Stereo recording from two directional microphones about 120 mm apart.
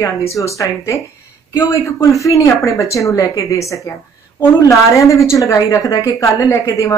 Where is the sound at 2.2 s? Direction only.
25° left (ahead or behind).